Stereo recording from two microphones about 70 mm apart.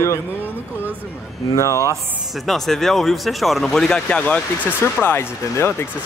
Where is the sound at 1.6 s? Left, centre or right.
Left.